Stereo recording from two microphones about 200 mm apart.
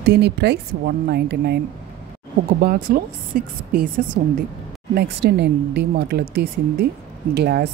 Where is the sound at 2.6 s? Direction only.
50° right (ahead or behind).